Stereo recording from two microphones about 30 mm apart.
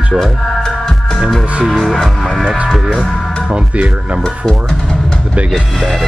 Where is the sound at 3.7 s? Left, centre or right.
Right.